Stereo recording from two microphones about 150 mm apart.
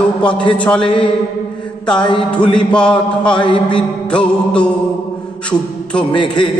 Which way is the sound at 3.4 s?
30° left (ahead or behind).